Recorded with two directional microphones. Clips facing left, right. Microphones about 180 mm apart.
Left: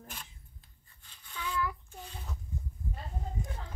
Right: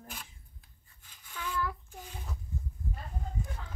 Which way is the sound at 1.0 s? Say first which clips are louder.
Even; 10° right (ahead or behind).